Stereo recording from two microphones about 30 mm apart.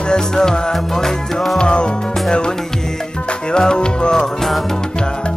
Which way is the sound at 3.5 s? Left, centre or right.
Left.